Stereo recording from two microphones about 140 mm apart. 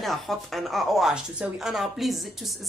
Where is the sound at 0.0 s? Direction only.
Centre (ahead or behind).